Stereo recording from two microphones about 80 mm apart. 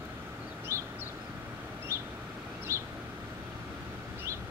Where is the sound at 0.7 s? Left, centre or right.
Right.